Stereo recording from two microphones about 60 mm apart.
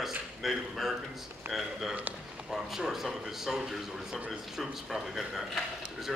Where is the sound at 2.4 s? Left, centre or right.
Centre.